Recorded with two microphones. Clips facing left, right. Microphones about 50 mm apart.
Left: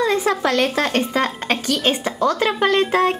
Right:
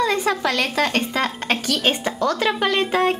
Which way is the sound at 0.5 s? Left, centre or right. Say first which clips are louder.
Left 2 dB; centre.